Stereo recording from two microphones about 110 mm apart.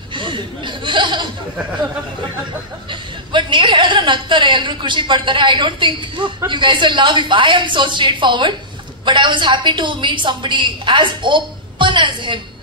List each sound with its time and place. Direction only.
0.1 s a woman's voice: 45° right (ahead or behind)
2.9 s a woman's voice: 45° right (ahead or behind)